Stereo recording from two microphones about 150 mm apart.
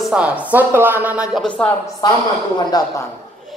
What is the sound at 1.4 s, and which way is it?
Speech, 10° left (ahead or behind).